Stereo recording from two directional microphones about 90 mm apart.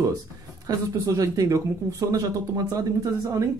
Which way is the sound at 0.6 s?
40° right (ahead or behind).